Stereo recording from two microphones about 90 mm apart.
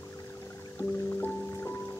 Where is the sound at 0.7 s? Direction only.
25° left (ahead or behind).